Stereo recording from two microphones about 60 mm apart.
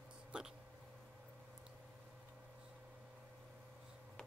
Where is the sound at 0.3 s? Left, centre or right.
Centre.